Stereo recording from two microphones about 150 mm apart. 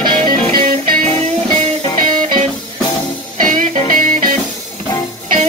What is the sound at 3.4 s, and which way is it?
Music, 60° right (ahead or behind).